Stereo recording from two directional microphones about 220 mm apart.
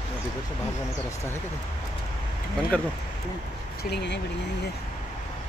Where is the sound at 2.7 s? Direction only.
5° left (ahead or behind).